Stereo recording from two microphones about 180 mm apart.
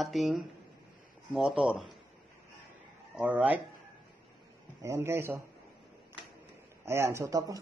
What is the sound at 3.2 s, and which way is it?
Speech, 5° right (ahead or behind).